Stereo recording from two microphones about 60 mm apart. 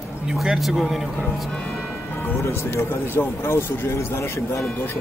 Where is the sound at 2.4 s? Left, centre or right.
Left.